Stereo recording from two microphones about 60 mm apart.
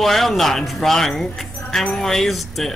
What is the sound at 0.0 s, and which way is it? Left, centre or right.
Speech, centre.